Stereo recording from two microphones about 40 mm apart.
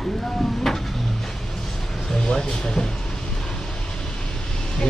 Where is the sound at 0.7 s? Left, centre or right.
Centre.